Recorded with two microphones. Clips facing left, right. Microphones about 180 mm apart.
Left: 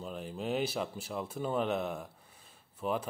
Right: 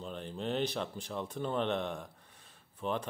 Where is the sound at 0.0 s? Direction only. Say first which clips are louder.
Left 1 dB; 5° left (ahead or behind).